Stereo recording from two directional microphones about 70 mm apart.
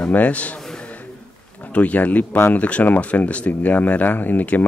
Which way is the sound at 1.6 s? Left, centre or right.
Left.